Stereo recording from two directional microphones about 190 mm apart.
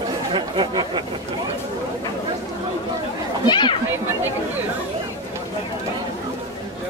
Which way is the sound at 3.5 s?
25° left (ahead or behind).